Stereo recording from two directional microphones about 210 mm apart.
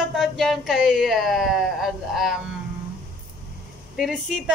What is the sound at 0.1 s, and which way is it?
Speech, centre (ahead or behind).